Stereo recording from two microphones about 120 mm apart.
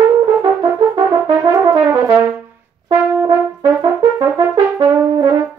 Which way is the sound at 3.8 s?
35° right (ahead or behind).